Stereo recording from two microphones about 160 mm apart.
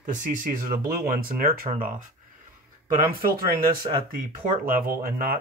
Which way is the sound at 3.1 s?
65° right (ahead or behind).